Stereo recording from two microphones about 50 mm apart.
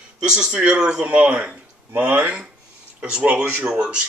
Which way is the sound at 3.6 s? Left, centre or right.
Centre.